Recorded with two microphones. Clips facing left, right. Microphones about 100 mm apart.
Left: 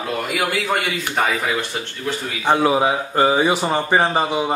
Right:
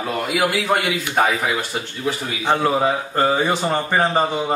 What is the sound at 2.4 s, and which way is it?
A man's voice, 10° left (ahead or behind).